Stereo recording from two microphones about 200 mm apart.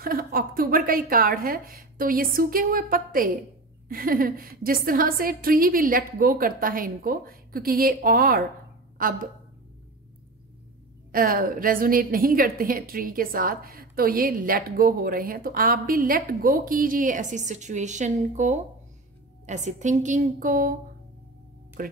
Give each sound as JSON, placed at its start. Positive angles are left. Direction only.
{"t": 0.0, "sound": "a woman's voice", "side_deg": -45}
{"t": 11.1, "sound": "a woman's voice", "side_deg": -45}
{"t": 21.8, "sound": "a woman's voice", "side_deg": -45}